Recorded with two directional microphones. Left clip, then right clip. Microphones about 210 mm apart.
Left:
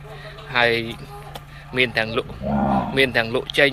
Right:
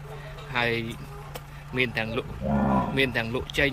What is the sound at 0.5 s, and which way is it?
Speech, 10° right (ahead or behind).